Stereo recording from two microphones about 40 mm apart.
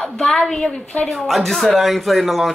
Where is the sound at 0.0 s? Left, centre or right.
Centre.